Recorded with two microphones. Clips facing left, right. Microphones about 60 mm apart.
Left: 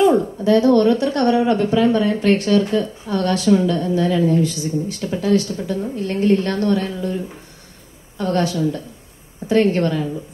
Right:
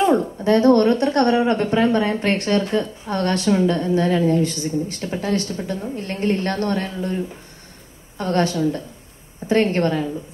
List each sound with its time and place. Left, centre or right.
0.0 s a woman's voice: right
8.2 s a woman's voice: right